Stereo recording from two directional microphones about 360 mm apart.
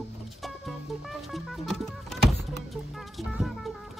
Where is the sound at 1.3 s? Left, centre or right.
Centre.